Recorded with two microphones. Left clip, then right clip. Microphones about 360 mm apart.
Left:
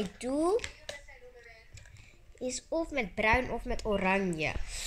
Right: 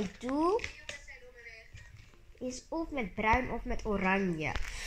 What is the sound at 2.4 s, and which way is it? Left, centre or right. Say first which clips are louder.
Speech: left 4 dB; centre.